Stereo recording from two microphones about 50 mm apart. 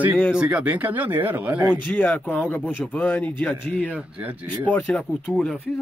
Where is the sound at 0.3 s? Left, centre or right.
Right.